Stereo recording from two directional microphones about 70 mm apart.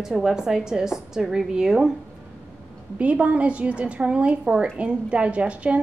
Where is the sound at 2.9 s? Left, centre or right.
Centre.